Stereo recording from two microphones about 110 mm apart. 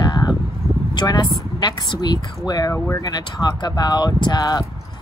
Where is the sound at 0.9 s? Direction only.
40° left (ahead or behind).